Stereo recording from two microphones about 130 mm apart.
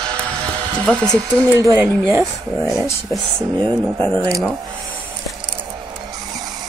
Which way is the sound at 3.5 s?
35° right (ahead or behind).